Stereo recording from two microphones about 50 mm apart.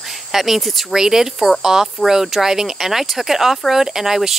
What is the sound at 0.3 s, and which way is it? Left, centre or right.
Speech, centre.